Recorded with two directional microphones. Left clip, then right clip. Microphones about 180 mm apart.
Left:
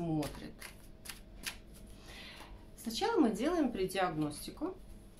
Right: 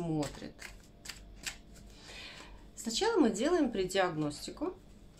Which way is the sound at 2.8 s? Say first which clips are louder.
Right 2 dB; 40° right (ahead or behind).